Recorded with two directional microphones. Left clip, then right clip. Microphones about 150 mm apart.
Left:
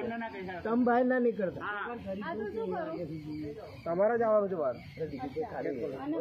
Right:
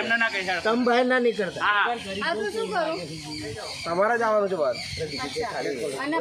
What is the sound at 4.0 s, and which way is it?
Speech, 25° right (ahead or behind).